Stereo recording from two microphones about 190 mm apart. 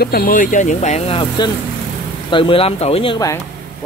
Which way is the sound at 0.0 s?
50° left (ahead or behind).